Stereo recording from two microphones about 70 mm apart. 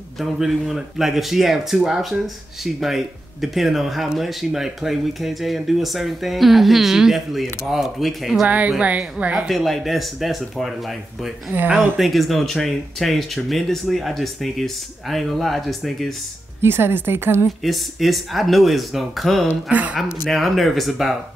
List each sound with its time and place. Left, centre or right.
0.2 s speech: centre
8.5 s speech: centre
9.5 s speech: centre
11.7 s speech: centre
16.6 s a woman's voice: right
17.6 s speech: centre
19.7 s speech: right
20.2 s speech: centre